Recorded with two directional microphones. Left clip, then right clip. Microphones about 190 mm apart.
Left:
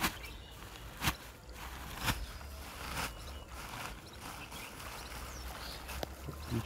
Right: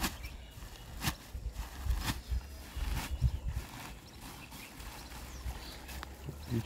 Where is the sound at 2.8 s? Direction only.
Centre (ahead or behind).